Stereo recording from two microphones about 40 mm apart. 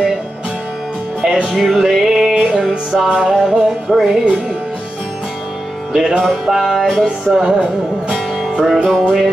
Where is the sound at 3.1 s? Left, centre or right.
Right.